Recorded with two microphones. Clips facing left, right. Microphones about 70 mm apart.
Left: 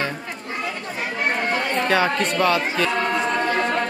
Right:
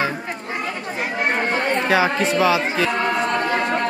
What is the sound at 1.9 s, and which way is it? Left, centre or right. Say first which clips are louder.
Speech: right 1 dB; centre.